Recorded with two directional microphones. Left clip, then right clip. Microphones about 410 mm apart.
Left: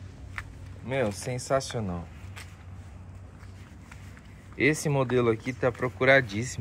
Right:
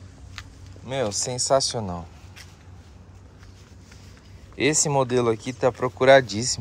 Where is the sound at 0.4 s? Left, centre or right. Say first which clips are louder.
Left 2 dB; centre.